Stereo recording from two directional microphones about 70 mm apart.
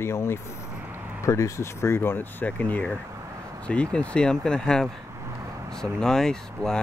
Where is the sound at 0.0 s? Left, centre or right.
Left.